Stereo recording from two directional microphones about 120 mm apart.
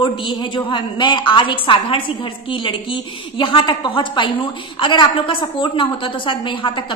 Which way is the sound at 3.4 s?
45° left (ahead or behind).